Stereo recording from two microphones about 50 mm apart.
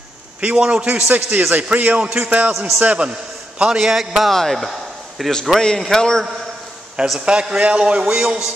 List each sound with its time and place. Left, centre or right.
0.6 s a man's voice: right
1.0 s a man's voice: right; by 4.3 s centre
4.3 s a man's voice: centre
7.2 s a man's voice: centre